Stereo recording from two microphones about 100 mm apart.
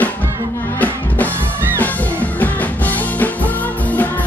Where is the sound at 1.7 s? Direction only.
15° left (ahead or behind).